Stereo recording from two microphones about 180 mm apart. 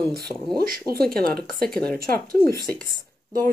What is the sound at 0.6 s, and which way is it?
Speech, 55° right (ahead or behind).